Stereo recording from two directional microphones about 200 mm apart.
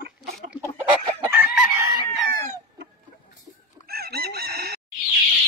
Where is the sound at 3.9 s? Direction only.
50° right (ahead or behind).